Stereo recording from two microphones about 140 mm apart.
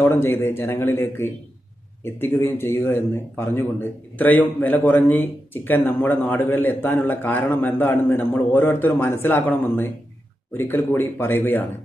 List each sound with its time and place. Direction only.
0.0 s speech: 15° left (ahead or behind)